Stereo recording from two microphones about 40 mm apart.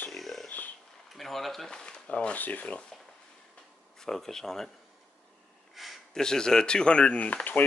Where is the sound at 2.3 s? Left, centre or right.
Left.